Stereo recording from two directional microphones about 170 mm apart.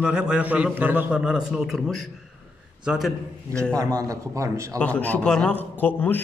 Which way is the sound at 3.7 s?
20° right (ahead or behind).